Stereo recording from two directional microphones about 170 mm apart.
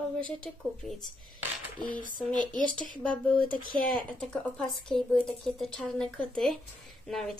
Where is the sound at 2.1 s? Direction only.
25° right (ahead or behind).